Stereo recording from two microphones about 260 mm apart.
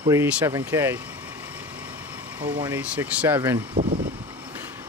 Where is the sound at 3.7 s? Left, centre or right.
Right.